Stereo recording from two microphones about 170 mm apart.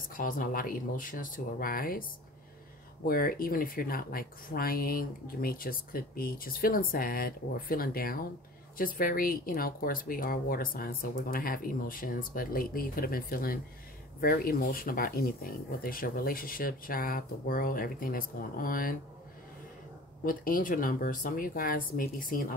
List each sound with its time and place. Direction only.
0.1 s speech: 55° left (ahead or behind)
3.1 s speech: 60° left (ahead or behind)
20.2 s speech: 55° left (ahead or behind)